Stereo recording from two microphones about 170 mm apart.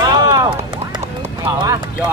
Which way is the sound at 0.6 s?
25° right (ahead or behind).